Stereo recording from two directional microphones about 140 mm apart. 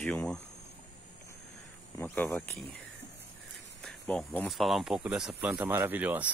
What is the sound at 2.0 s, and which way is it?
Speech, 15° left (ahead or behind).